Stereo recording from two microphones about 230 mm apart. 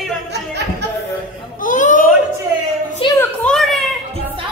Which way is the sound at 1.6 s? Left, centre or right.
Left.